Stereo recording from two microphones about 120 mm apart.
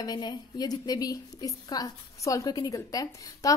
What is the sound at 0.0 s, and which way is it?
A woman's voice, 35° left (ahead or behind).